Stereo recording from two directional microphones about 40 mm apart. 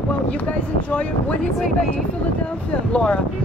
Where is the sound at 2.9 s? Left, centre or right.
Left.